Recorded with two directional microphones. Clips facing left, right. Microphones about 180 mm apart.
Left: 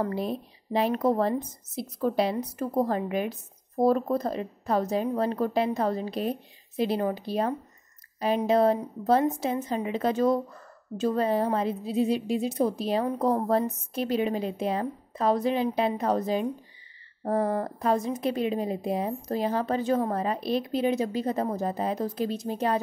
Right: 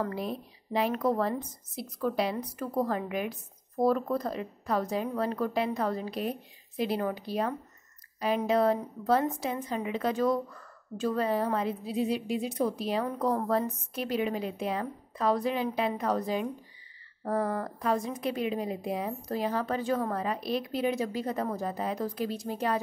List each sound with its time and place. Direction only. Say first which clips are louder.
0.0 s a woman's voice: left 4 dB; 30° left (ahead or behind)